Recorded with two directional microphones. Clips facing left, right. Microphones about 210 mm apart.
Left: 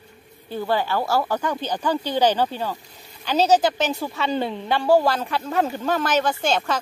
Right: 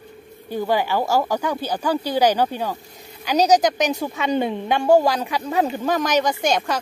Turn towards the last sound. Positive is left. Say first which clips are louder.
# right 1 dB
turn(degrees=-15)  # may be behind; listen again after turning